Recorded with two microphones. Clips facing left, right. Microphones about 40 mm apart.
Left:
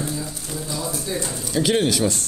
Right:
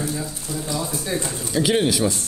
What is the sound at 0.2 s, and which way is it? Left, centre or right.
Speech, right.